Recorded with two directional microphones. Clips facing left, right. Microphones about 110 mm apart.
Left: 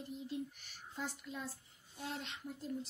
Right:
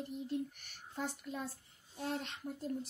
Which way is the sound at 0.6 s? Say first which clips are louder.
Right 3 dB; 50° right (ahead or behind).